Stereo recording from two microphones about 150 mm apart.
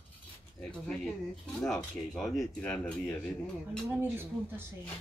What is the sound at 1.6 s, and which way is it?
Speech, centre (ahead or behind).